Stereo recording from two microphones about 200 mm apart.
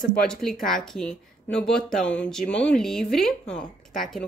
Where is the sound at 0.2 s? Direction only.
Centre (ahead or behind).